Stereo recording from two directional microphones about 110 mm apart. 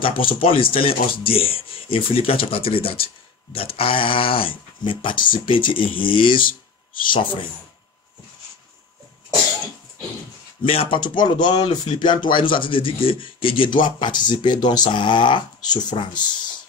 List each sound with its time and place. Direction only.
0.0 s speech: 55° left (ahead or behind)
10.6 s speech: 60° left (ahead or behind)
11.0 s speech: 45° left (ahead or behind)